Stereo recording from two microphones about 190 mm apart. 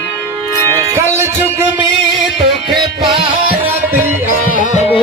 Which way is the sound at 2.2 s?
Centre (ahead or behind).